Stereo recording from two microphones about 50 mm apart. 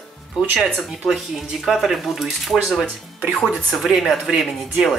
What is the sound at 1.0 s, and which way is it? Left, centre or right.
A man's voice, centre.